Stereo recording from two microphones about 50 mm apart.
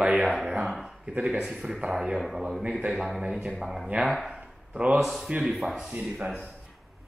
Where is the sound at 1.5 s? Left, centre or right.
Centre.